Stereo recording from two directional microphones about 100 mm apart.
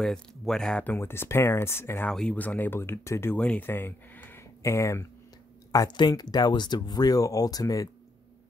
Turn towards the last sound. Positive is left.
turn(degrees=35)  # may be behind; listen again after turning